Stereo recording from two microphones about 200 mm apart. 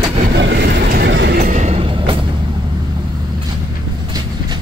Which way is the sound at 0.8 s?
50° right (ahead or behind).